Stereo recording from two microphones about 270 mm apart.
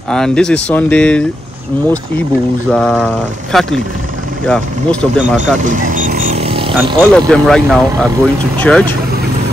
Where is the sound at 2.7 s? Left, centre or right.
Centre.